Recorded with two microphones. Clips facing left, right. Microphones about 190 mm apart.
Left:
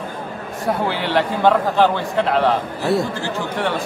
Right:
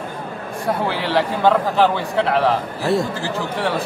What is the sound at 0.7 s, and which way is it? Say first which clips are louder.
A man's voice: even; centre (ahead or behind).